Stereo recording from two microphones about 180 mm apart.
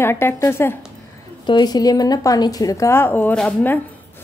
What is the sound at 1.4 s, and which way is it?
A woman's voice, 25° left (ahead or behind).